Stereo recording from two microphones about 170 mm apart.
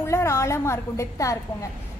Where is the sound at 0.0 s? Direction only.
15° left (ahead or behind).